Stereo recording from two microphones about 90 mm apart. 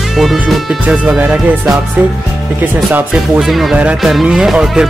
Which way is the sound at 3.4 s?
Centre (ahead or behind).